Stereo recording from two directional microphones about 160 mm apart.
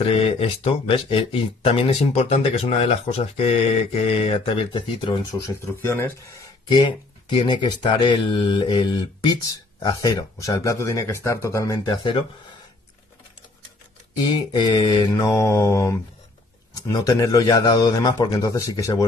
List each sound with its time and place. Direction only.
0.0 s speech: 40° left (ahead or behind)
5.4 s speech: 15° left (ahead or behind)
6.7 s speech: 30° left (ahead or behind)
14.2 s speech: 30° left (ahead or behind)